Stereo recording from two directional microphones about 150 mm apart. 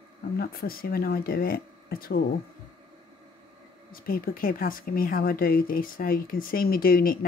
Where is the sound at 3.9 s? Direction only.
75° left (ahead or behind).